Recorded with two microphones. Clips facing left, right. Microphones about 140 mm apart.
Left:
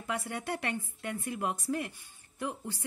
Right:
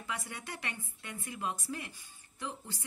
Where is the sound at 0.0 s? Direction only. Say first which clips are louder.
Left 6 dB; 55° left (ahead or behind).